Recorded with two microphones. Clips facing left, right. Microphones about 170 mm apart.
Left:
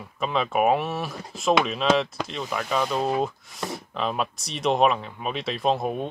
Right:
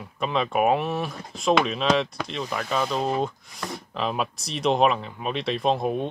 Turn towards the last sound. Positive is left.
turn(degrees=0)  # may be behind; listen again after turning